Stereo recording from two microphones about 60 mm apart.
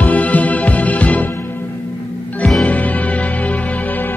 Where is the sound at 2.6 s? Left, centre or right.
Left.